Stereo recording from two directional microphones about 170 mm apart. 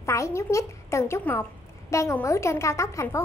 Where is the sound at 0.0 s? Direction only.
15° left (ahead or behind).